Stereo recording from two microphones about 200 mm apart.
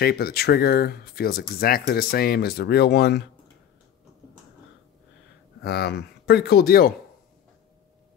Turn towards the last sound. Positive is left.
turn(degrees=50)  # may be behind; listen again after turning